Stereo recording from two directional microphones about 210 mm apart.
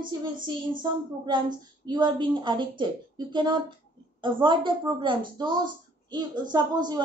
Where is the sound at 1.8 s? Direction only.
20° right (ahead or behind).